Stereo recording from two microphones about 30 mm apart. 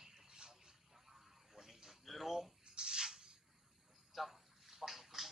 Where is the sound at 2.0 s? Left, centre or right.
Centre.